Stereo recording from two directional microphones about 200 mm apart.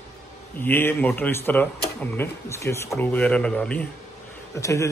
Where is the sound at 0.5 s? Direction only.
10° left (ahead or behind).